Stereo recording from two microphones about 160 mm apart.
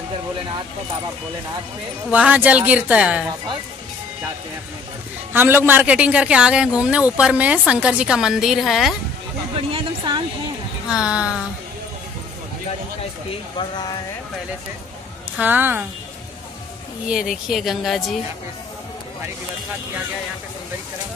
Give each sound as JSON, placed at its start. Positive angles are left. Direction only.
{"t": 2.0, "sound": "a man's voice", "side_deg": -10}
{"t": 5.3, "sound": "a man's voice", "side_deg": -15}
{"t": 9.7, "sound": "a sound", "side_deg": -30}
{"t": 10.9, "sound": "speech", "side_deg": -5}
{"t": 13.6, "sound": "speech", "side_deg": 25}
{"t": 15.3, "sound": "a man's voice", "side_deg": -10}
{"t": 17.1, "sound": "speech", "side_deg": -5}